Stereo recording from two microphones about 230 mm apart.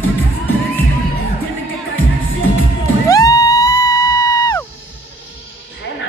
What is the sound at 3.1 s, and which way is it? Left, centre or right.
Music, centre.